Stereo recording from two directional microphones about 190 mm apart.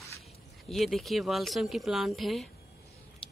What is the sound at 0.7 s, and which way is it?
A man's voice, centre (ahead or behind).